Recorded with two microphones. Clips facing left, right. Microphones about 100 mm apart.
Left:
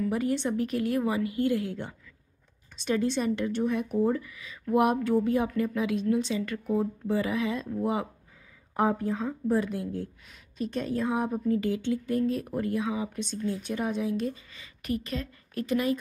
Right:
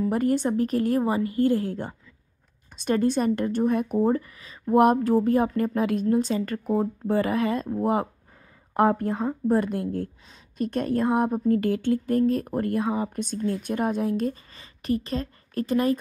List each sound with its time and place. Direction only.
0.1 s a woman's voice: 45° right (ahead or behind)
8.7 s a woman's voice: 60° right (ahead or behind); by 16.0 s 40° right (ahead or behind)